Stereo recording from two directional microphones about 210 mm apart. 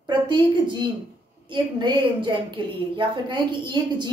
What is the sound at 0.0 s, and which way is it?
A woman's voice, 20° right (ahead or behind).